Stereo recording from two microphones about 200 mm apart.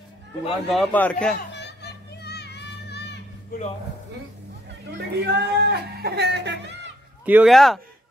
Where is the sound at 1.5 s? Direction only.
55° left (ahead or behind).